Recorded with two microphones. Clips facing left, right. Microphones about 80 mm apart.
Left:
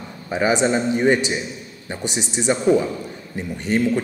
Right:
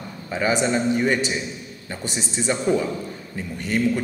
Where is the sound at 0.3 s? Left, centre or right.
Centre.